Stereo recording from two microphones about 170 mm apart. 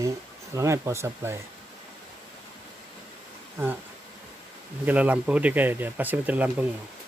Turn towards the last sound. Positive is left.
turn(degrees=-10)  # may be behind; listen again after turning